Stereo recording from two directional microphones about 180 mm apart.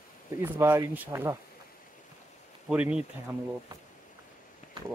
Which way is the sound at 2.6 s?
5° right (ahead or behind).